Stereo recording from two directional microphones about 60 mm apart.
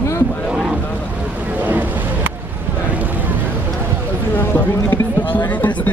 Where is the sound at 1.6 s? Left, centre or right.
Right.